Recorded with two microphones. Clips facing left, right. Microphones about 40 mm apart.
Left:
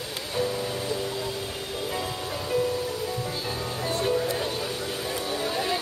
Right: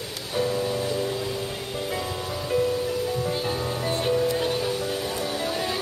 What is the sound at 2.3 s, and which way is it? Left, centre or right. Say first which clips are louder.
Music: right 2 dB; centre.